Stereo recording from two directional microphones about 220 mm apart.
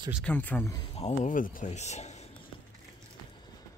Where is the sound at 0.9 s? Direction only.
30° left (ahead or behind).